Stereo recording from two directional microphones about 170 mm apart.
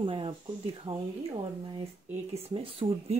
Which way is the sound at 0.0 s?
30° right (ahead or behind).